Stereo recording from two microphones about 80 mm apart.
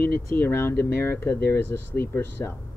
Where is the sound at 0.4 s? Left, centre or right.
Left.